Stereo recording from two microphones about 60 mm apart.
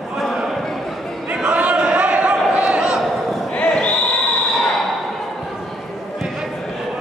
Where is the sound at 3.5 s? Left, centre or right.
Centre.